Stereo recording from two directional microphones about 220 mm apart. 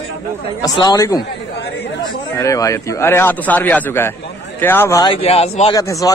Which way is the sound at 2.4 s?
15° left (ahead or behind).